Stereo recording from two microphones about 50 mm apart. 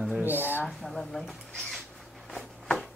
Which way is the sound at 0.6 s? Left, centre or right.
Centre.